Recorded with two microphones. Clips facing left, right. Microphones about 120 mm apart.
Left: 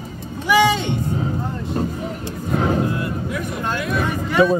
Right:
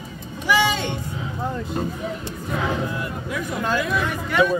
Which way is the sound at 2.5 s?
40° left (ahead or behind).